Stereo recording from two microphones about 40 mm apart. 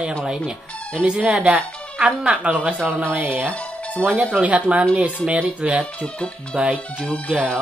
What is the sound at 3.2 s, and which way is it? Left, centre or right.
Speech, right.